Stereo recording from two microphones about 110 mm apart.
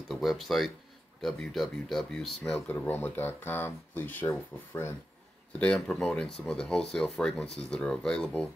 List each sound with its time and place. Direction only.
0.1 s speech: centre (ahead or behind)
2.7 s speech: 20° left (ahead or behind)
5.6 s speech: 10° left (ahead or behind)